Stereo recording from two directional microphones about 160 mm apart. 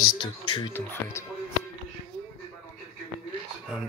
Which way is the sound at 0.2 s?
30° left (ahead or behind).